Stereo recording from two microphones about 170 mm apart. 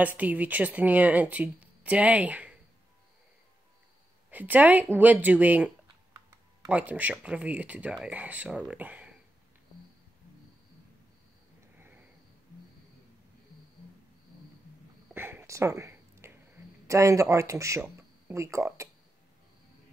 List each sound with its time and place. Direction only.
0.0 s speech: 10° right (ahead or behind)
4.3 s speech: 10° right (ahead or behind)
6.7 s speech: 10° right (ahead or behind)
15.1 s a sound: 15° right (ahead or behind)